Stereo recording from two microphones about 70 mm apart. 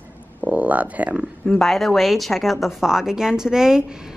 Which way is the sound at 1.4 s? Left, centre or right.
Centre.